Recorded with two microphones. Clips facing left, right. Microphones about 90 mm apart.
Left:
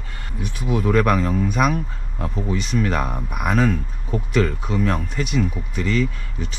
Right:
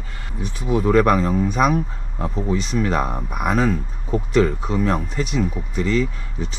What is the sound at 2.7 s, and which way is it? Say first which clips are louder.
Speech: left 1 dB; 35° right (ahead or behind).